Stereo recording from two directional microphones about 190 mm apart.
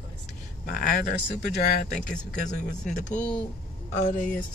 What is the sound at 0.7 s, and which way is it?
Speech, 45° left (ahead or behind).